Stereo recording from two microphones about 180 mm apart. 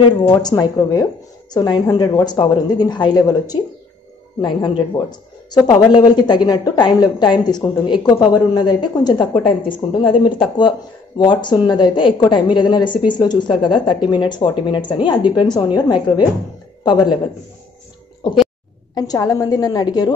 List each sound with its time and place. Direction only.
0.4 s a woman's voice: 20° left (ahead or behind)
18.9 s a woman's voice: 20° left (ahead or behind)